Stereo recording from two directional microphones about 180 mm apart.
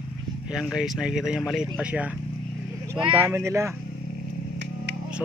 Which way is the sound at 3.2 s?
15° right (ahead or behind).